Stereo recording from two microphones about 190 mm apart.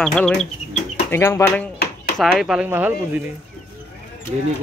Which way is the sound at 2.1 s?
Centre (ahead or behind).